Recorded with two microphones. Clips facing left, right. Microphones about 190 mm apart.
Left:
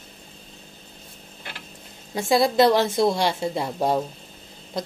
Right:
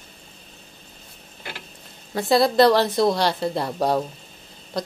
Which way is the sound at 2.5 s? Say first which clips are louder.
Right 1 dB; 20° left (ahead or behind).